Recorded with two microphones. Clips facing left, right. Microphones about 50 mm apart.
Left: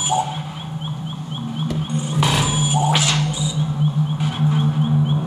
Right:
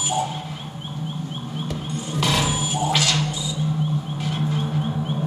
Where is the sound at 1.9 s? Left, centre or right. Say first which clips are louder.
Left 2 dB; left.